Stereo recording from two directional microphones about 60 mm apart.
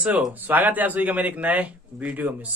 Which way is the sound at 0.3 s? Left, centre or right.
Right.